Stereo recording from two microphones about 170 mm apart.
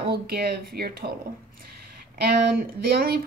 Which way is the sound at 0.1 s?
65° right (ahead or behind).